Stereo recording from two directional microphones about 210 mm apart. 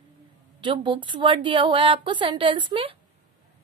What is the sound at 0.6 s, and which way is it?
A woman's voice, 20° right (ahead or behind).